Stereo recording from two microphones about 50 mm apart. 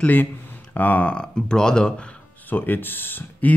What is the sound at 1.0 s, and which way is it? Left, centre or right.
Speech, centre.